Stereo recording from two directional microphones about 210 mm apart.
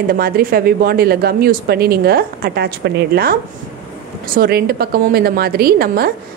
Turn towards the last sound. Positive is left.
turn(degrees=-45)  # may be behind; listen again after turning